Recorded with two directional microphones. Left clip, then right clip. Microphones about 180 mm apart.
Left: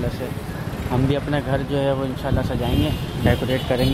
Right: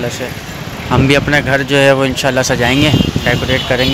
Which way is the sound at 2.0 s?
40° right (ahead or behind).